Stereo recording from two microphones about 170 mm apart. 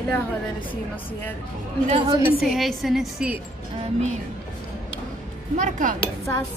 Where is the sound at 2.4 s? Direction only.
Centre (ahead or behind).